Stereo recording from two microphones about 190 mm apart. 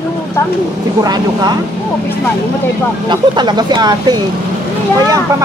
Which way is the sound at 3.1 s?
25° right (ahead or behind).